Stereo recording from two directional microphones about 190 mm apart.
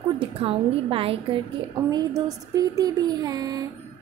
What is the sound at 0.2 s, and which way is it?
A woman's voice, 30° right (ahead or behind).